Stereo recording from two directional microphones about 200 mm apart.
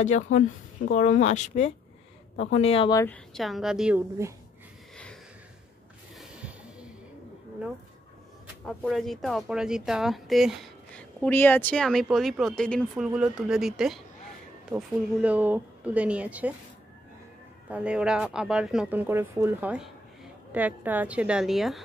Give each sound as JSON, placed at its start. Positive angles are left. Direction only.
{"t": 0.0, "sound": "speech", "side_deg": 35}
{"t": 3.3, "sound": "speech", "side_deg": 0}
{"t": 6.1, "sound": "a sound", "side_deg": -5}
{"t": 8.6, "sound": "a woman's voice", "side_deg": 0}
{"t": 17.6, "sound": "a woman's voice", "side_deg": -5}